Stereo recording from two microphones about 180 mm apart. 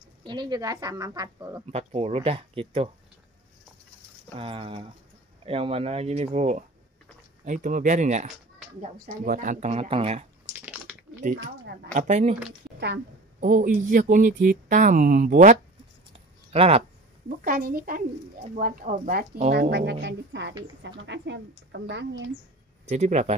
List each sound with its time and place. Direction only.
0.2 s speech: 25° right (ahead or behind)
1.7 s speech: 35° right (ahead or behind)
4.4 s speech: 30° right (ahead or behind)
11.9 s speech: 40° right (ahead or behind)
13.4 s speech: 45° right (ahead or behind)
16.5 s speech: 35° right (ahead or behind)
17.4 s speech: 50° right (ahead or behind)
19.7 s a woman's voice: 75° right (ahead or behind)
22.8 s speech: 40° right (ahead or behind)